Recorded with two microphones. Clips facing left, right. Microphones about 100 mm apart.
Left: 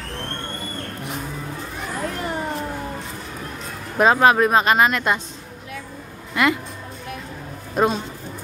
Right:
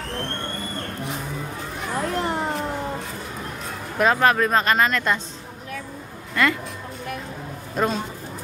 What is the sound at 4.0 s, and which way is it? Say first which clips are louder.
Speech: left 3 dB; 20° left (ahead or behind).